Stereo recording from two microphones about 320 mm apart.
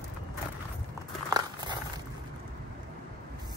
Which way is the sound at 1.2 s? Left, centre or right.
Centre.